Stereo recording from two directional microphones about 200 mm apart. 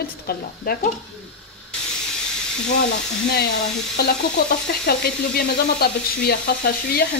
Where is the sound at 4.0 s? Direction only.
50° left (ahead or behind).